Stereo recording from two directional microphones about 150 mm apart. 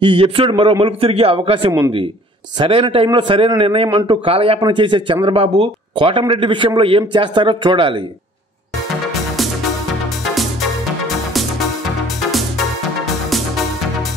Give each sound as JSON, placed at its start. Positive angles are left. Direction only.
{"t": 0.0, "sound": "speech", "side_deg": -35}
{"t": 12.3, "sound": "music", "side_deg": 0}